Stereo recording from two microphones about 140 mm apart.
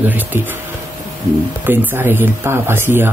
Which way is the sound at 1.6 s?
15° right (ahead or behind).